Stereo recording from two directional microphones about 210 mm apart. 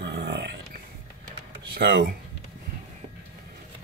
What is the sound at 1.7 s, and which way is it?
Speech, 50° right (ahead or behind).